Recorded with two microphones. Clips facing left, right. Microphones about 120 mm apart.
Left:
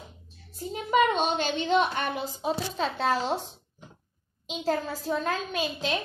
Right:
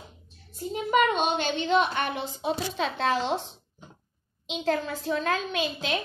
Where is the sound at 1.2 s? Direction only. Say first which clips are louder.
Even; 40° left (ahead or behind).